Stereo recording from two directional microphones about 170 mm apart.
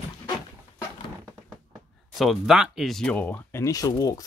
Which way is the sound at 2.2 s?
Centre (ahead or behind).